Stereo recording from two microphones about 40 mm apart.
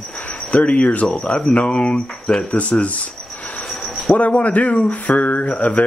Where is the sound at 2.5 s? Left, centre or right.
Left.